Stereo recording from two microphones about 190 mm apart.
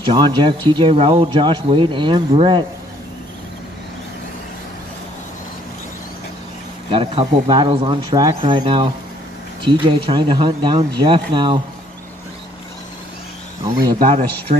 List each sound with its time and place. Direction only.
0.0 s speech: 25° right (ahead or behind)
6.9 s speech: 30° right (ahead or behind)
13.9 s speech: 35° right (ahead or behind)